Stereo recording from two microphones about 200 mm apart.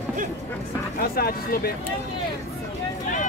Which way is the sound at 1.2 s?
50° left (ahead or behind).